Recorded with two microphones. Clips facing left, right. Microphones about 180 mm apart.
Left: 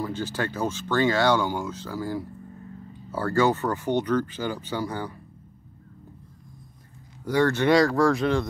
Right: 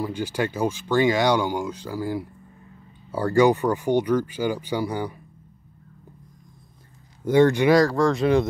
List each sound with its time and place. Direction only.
0.0 s speech: 15° right (ahead or behind)
7.2 s speech: 20° right (ahead or behind)
7.7 s speech: centre (ahead or behind)